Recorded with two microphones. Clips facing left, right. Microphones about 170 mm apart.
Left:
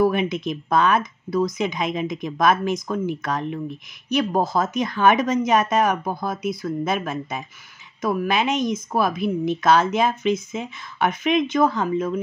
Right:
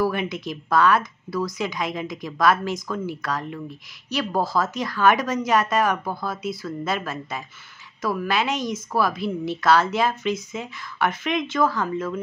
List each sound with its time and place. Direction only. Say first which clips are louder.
0.0 s a woman's voice: left 4 dB; 20° left (ahead or behind)